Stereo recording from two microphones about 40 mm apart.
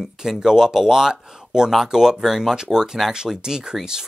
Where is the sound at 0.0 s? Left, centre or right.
Centre.